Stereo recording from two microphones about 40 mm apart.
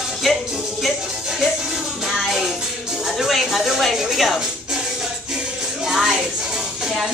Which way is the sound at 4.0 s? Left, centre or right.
Centre.